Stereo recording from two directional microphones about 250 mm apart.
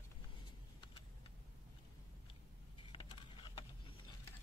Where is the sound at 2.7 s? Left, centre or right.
Left.